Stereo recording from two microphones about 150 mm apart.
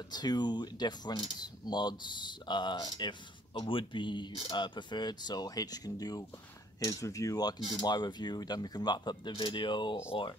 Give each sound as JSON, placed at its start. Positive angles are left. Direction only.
{"t": 0.1, "sound": "speech", "side_deg": 30}